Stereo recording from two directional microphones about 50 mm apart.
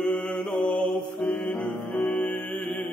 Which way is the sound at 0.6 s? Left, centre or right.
Left.